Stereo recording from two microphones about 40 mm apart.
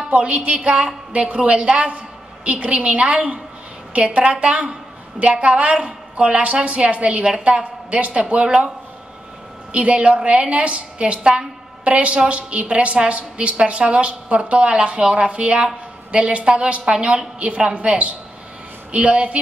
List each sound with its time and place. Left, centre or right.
0.1 s a woman's voice: right
9.7 s a woman's voice: right